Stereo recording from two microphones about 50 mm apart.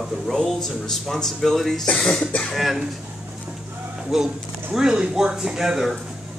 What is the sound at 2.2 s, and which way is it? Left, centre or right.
Speech, left.